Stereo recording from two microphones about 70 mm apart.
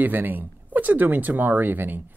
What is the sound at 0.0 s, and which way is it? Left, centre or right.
Speech, right.